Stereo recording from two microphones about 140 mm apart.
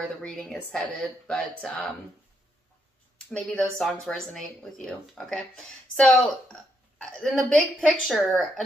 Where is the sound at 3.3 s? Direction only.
5° left (ahead or behind).